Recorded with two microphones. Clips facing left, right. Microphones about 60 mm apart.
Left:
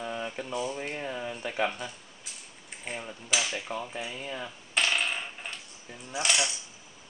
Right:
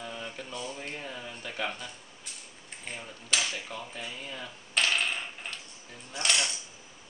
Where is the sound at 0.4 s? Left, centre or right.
Centre.